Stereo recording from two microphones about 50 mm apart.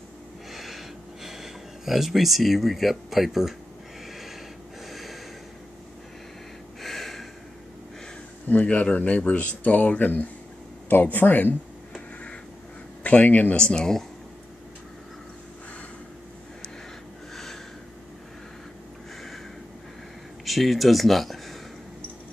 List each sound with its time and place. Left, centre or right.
0.5 s a sound: centre
4.8 s snort: centre
6.8 s a sound: centre
8.5 s speech: left
13.0 s speech: left
13.6 s speech: centre
20.4 s speech: centre